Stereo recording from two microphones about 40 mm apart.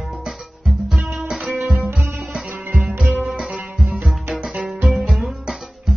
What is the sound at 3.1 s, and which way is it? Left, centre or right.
Music, right.